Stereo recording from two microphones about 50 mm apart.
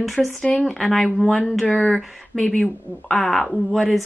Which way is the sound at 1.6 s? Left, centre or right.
Centre.